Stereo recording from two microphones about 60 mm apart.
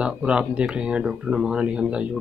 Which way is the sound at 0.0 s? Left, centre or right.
Centre.